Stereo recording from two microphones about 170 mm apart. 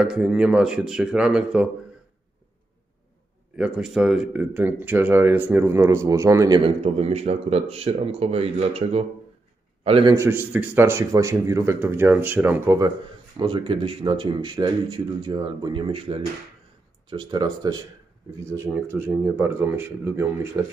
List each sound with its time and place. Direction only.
0.0 s speech: 5° right (ahead or behind)
3.5 s speech: 5° right (ahead or behind)
6.6 s speech: 35° right (ahead or behind)
10.1 s speech: 15° right (ahead or behind)
13.4 s speech: 30° right (ahead or behind); by 20.2 s 15° right (ahead or behind)